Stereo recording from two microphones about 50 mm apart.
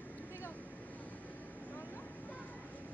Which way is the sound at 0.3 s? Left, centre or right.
Left.